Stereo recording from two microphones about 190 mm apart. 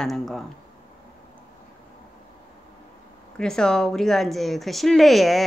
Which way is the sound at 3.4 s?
5° left (ahead or behind).